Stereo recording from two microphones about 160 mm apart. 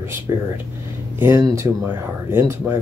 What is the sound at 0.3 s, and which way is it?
Speech, 20° right (ahead or behind).